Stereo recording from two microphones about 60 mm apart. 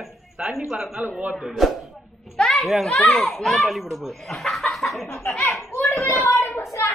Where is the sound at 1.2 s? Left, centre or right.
Centre.